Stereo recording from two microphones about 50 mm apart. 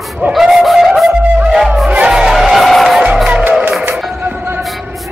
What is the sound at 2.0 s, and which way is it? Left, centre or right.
Music, centre.